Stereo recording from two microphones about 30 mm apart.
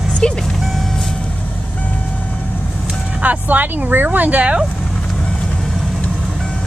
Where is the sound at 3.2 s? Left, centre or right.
Right.